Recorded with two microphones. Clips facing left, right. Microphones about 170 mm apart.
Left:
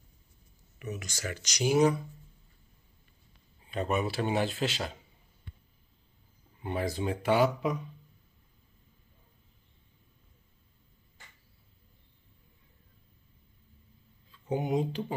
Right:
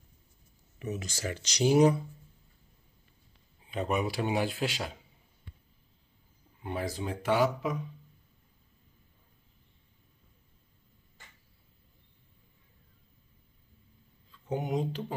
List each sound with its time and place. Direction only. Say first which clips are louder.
0.7 s speech: right 3 dB; 30° right (ahead or behind)
3.7 s speech: even; 15° right (ahead or behind)
6.6 s speech: left 3 dB; centre (ahead or behind)
14.5 s speech: left 2 dB; 5° left (ahead or behind)